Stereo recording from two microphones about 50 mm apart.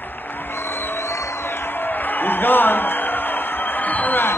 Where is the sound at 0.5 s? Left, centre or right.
Left.